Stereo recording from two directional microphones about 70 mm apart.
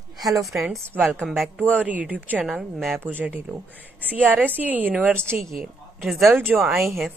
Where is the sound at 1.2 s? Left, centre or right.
Centre.